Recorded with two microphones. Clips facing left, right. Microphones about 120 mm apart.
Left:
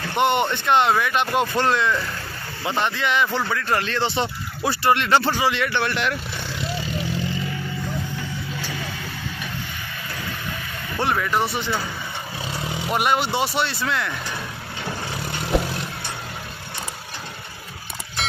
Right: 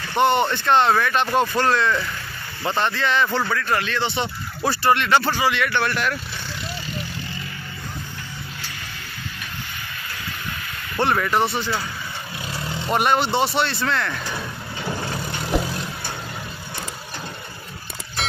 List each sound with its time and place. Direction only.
0.1 s speech: 15° left (ahead or behind)
3.5 s speech: 30° left (ahead or behind)
4.6 s speech: 20° left (ahead or behind)
11.0 s speech: centre (ahead or behind)
11.5 s speech: 15° left (ahead or behind)
14.9 s vehicle: centre (ahead or behind)